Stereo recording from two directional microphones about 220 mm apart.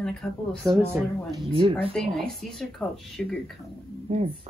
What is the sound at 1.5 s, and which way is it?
Speech, 25° right (ahead or behind).